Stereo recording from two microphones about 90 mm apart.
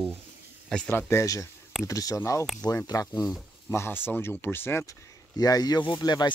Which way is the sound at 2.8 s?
45° left (ahead or behind).